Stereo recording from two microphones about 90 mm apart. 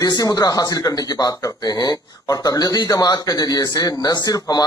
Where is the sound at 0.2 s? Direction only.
45° left (ahead or behind).